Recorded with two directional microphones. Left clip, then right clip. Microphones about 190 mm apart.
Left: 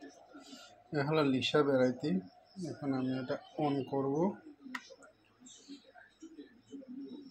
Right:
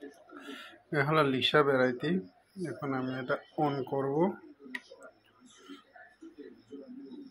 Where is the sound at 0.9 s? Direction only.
10° right (ahead or behind).